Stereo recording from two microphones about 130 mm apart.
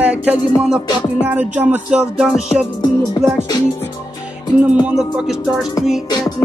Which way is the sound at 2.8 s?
35° left (ahead or behind).